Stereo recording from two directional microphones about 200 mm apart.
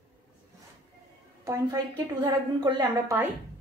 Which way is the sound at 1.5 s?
15° right (ahead or behind).